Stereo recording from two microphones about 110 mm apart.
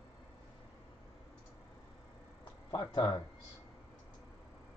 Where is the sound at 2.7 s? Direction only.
35° left (ahead or behind).